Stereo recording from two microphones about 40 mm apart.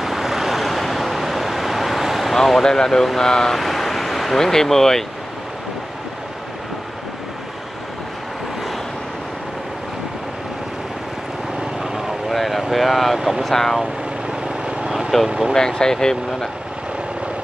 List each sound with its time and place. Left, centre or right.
0.0 s vehicle: centre
2.3 s speech: centre
12.3 s vehicle: centre
12.7 s speech: centre
13.5 s speech: centre
15.2 s speech: centre
15.5 s speech: centre